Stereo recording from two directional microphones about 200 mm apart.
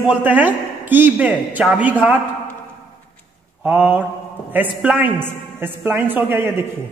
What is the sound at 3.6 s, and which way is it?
A man's voice, 10° right (ahead or behind).